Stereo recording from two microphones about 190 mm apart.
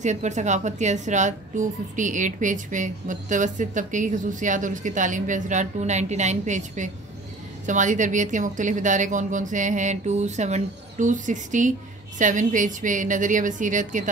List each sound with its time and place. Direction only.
0.0 s a woman's voice: 40° right (ahead or behind)